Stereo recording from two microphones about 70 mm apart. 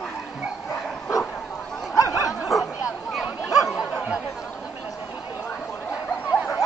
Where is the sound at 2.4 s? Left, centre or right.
Centre.